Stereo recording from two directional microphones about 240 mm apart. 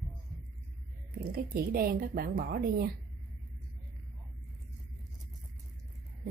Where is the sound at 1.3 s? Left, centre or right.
Right.